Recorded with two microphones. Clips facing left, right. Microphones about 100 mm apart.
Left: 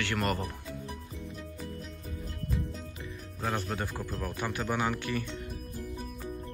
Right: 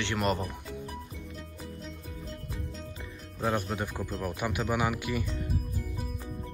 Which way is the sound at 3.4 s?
20° right (ahead or behind).